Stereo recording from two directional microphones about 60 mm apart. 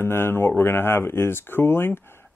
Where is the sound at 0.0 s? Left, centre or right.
Left.